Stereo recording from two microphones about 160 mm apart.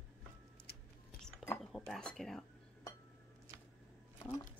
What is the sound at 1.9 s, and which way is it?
Speech, 5° left (ahead or behind).